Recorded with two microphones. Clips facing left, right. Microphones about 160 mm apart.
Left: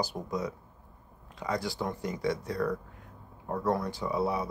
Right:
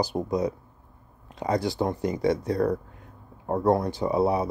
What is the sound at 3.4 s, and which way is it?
Speech, 40° right (ahead or behind).